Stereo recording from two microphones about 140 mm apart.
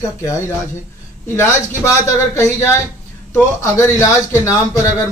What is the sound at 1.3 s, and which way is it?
A man's voice, 20° left (ahead or behind).